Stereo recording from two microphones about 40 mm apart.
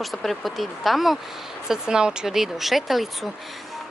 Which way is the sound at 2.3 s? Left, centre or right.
Centre.